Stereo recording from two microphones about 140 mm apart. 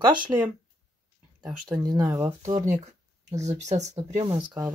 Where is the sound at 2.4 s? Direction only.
60° right (ahead or behind).